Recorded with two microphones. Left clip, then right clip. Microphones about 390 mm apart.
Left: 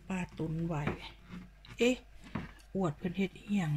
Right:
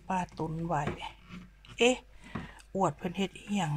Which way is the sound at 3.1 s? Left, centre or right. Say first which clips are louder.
Right 2 dB; centre.